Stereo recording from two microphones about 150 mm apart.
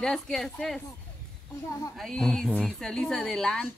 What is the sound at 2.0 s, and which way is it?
Speech, 5° left (ahead or behind).